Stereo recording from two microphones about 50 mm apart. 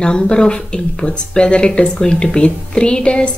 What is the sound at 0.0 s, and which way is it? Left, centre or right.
A woman's voice, centre.